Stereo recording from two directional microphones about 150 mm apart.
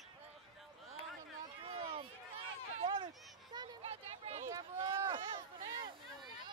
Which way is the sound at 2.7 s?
30° right (ahead or behind).